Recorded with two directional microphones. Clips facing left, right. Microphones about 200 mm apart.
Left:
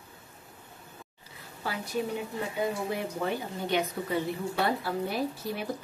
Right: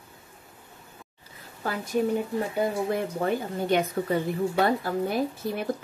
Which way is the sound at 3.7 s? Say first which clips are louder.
Right 5 dB; 50° right (ahead or behind).